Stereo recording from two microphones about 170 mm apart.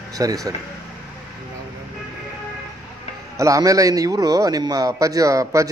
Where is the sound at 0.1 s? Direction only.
20° right (ahead or behind).